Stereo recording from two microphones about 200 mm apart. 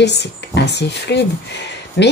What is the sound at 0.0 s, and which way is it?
Speech, 60° left (ahead or behind).